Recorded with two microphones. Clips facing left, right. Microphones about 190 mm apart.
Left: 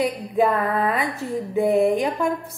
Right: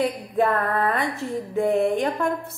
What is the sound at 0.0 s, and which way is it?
A woman's voice, centre (ahead or behind).